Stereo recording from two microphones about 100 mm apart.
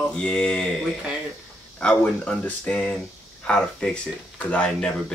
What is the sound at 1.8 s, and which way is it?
Speech, 10° left (ahead or behind).